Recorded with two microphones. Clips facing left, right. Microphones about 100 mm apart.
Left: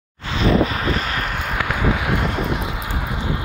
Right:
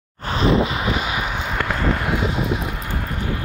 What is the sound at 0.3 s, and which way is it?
Vehicle, 35° right (ahead or behind).